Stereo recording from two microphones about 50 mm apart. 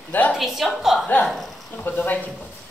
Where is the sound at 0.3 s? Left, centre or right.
Centre.